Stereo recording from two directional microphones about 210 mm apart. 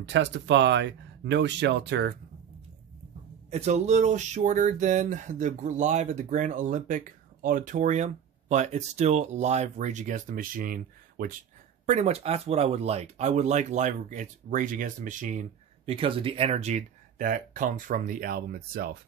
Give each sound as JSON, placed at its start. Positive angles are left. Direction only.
{"t": 0.0, "sound": "speech", "side_deg": -55}
{"t": 3.4, "sound": "speech", "side_deg": -30}